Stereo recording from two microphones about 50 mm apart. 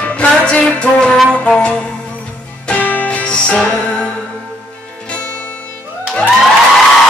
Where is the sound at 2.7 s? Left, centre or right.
Left.